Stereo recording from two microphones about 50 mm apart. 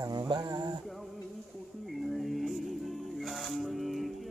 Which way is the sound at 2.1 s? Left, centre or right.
Centre.